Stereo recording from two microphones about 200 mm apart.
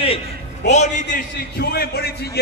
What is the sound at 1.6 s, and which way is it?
Speech, 50° left (ahead or behind).